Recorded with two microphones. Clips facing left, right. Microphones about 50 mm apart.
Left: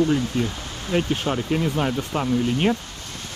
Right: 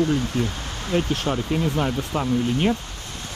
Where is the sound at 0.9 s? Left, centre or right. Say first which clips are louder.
Even; left.